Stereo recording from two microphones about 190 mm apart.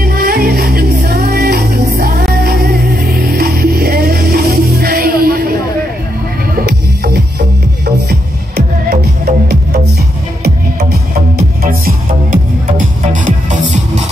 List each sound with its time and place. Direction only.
0.0 s music: 55° right (ahead or behind)
10.4 s music: 55° right (ahead or behind); by 14.0 s 40° right (ahead or behind)